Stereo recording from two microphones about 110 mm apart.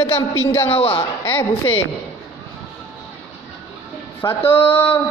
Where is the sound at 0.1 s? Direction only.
20° left (ahead or behind).